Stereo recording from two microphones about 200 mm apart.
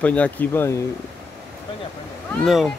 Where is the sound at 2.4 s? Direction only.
Centre (ahead or behind).